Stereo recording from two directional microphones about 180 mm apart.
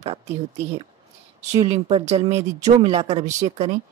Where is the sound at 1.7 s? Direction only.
35° right (ahead or behind).